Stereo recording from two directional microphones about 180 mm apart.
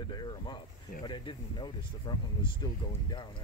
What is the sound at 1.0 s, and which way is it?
Speech, 25° left (ahead or behind).